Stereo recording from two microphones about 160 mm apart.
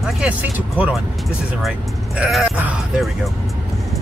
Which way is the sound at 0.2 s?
10° right (ahead or behind).